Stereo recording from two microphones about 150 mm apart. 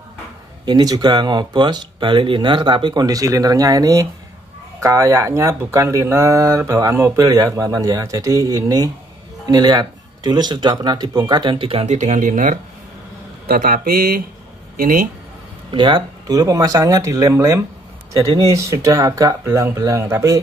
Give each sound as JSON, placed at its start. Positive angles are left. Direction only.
{"t": 0.7, "sound": "speech", "side_deg": -25}
{"t": 13.5, "sound": "speech", "side_deg": -75}
{"t": 14.8, "sound": "speech", "side_deg": -70}
{"t": 15.7, "sound": "speech", "side_deg": -30}